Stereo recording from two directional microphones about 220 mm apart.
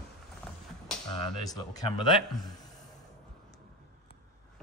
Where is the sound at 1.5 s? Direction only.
15° left (ahead or behind).